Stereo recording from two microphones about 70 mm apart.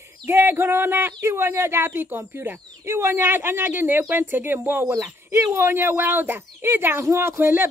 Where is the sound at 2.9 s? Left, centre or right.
Right.